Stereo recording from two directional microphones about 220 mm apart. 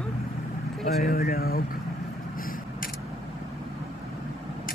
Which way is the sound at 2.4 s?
40° left (ahead or behind).